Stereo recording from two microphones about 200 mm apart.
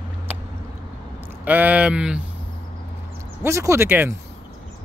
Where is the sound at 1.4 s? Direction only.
10° right (ahead or behind).